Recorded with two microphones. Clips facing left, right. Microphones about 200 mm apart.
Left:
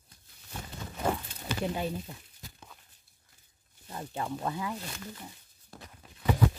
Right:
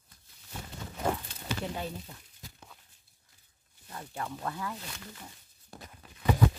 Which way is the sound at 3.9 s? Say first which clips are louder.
Left 4 dB; 20° left (ahead or behind).